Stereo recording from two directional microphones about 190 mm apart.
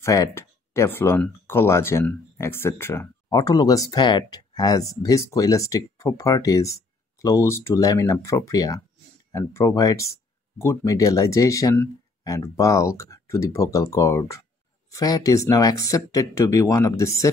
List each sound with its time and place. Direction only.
0.0 s speech: 15° left (ahead or behind)